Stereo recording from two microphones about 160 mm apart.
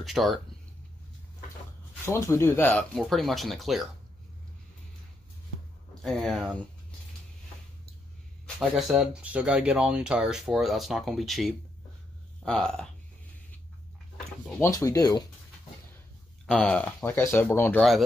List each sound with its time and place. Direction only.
0.0 s speech: centre (ahead or behind)
2.0 s speech: 15° left (ahead or behind); by 3.9 s centre (ahead or behind)
6.0 s speech: centre (ahead or behind)
8.5 s speech: centre (ahead or behind)
14.6 s speech: 20° left (ahead or behind)
16.4 s speech: 5° left (ahead or behind)